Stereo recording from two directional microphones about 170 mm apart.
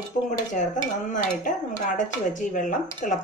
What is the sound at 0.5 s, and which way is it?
Speech, 50° left (ahead or behind).